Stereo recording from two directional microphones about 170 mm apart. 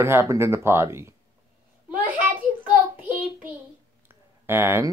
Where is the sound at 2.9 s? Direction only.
10° right (ahead or behind).